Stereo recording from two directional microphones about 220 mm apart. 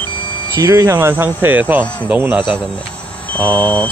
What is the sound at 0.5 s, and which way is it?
Speech, 15° right (ahead or behind).